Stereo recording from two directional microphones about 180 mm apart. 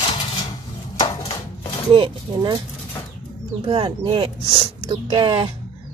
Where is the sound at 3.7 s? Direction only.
30° right (ahead or behind).